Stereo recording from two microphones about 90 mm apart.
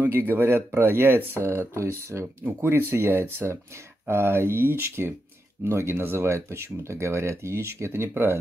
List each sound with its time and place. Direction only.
0.3 s speech: 25° right (ahead or behind)